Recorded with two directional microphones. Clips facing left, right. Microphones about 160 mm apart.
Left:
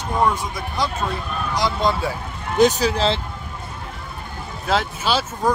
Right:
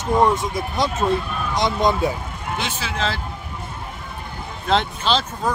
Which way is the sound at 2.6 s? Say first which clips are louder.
Left 11 dB; 40° left (ahead or behind).